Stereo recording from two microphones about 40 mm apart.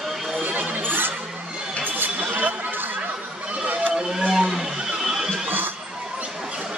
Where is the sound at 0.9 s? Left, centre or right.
Right.